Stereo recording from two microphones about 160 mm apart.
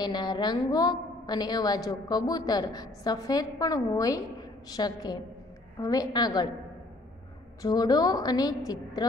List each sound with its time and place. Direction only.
0.0 s a woman's voice: 25° left (ahead or behind)
7.6 s a woman's voice: 25° left (ahead or behind)